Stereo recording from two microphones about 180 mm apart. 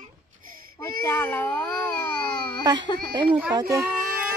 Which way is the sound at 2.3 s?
60° right (ahead or behind).